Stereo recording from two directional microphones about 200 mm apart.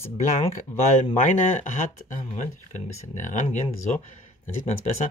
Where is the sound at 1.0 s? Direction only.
40° left (ahead or behind).